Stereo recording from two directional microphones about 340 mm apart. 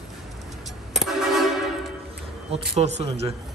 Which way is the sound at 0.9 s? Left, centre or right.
Centre.